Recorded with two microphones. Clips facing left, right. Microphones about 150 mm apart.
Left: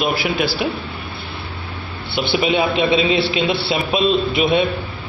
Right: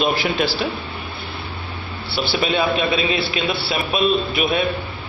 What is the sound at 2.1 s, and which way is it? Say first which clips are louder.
A man's voice: left 3 dB; 20° left (ahead or behind).